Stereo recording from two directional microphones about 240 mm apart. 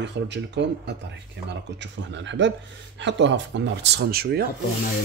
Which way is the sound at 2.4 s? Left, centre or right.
Right.